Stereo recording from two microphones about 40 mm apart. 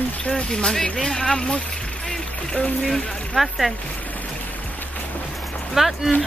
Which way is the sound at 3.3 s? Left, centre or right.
Centre.